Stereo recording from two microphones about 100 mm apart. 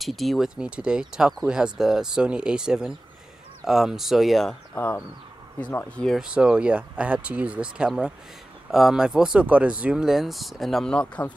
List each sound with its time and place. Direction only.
0.0 s speech: centre (ahead or behind)
4.7 s speech: 20° left (ahead or behind)
6.1 s speech: 10° right (ahead or behind); by 11.3 s 10° left (ahead or behind)